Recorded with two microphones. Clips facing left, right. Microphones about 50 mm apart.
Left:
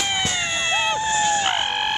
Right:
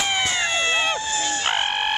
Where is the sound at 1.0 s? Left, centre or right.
Left.